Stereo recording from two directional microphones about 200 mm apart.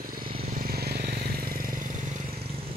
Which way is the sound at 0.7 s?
50° right (ahead or behind).